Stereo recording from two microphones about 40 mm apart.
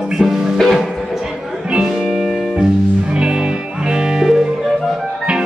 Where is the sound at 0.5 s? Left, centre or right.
Centre.